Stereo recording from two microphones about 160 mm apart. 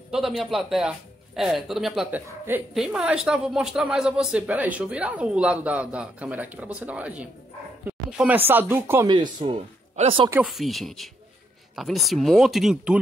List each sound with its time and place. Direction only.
0.1 s a woman's voice: centre (ahead or behind)
9.0 s speech: 30° right (ahead or behind)
10.4 s speech: centre (ahead or behind)